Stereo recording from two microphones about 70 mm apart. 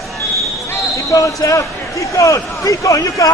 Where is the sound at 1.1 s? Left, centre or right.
Left.